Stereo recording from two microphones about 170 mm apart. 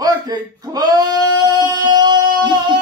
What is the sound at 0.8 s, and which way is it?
Sheep, 25° right (ahead or behind).